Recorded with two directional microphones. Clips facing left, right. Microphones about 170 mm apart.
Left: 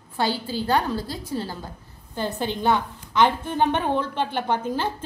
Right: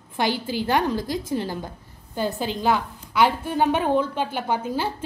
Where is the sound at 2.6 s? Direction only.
5° right (ahead or behind).